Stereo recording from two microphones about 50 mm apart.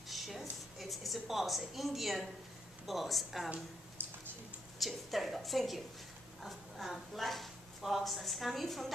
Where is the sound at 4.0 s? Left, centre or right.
Right.